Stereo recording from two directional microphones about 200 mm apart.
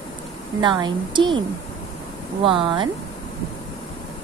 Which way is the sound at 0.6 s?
20° right (ahead or behind).